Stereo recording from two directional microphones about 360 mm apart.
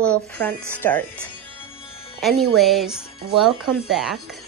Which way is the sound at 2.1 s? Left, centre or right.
Centre.